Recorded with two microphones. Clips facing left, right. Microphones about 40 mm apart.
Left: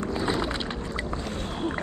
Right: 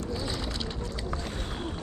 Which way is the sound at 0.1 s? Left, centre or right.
Left.